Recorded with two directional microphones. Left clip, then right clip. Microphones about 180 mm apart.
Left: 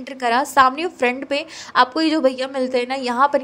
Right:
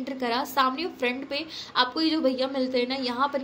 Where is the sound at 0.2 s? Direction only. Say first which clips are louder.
Left 10 dB; 55° left (ahead or behind).